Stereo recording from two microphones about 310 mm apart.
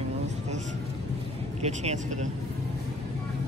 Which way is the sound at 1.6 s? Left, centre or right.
Right.